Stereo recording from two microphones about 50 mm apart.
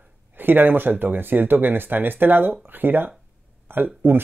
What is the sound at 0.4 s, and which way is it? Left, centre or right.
Speech, right.